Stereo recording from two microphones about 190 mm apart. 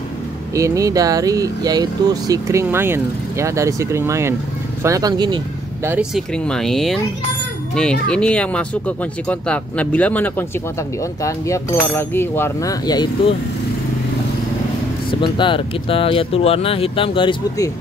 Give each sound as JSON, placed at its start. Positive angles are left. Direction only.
{"t": 0.6, "sound": "speech", "side_deg": -15}
{"t": 5.9, "sound": "speech", "side_deg": -5}
{"t": 15.0, "sound": "speech", "side_deg": 25}